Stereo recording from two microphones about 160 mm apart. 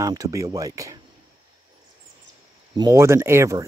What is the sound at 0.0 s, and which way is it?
Speech, 20° right (ahead or behind).